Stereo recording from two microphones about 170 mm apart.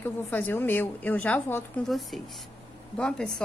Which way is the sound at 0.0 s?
10° left (ahead or behind).